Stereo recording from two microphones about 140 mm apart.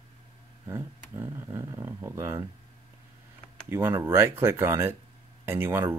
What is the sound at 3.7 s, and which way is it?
Speech, 20° right (ahead or behind).